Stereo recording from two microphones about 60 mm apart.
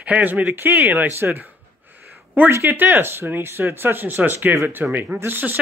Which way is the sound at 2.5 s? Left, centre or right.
Right.